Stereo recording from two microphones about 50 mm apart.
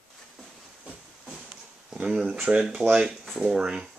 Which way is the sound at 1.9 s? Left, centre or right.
Centre.